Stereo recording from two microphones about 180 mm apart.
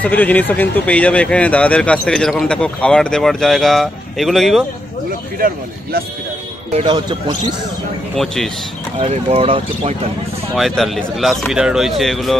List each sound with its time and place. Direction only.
0.0 s speech: 10° left (ahead or behind)
6.9 s speech: 25° right (ahead or behind)
9.0 s speech: 35° right (ahead or behind)
10.5 s speech: centre (ahead or behind)